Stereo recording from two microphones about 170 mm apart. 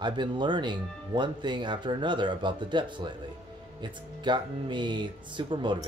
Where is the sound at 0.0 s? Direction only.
25° right (ahead or behind).